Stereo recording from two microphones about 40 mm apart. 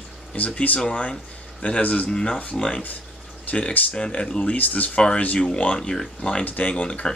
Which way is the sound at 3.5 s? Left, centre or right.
Left.